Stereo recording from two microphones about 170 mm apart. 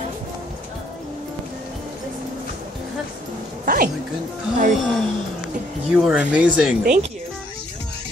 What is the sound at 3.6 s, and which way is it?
Speech, 60° right (ahead or behind).